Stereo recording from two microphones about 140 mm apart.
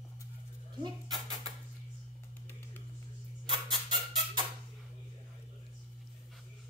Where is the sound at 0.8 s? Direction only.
30° right (ahead or behind).